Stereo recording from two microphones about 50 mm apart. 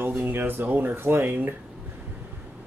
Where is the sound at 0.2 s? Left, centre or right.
Right.